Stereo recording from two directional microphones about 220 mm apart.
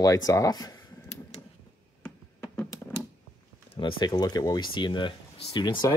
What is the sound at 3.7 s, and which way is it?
Speech, 20° left (ahead or behind).